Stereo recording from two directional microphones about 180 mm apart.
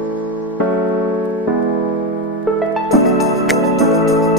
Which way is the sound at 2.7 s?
Centre (ahead or behind).